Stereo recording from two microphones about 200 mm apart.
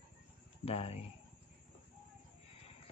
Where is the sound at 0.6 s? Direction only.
30° left (ahead or behind).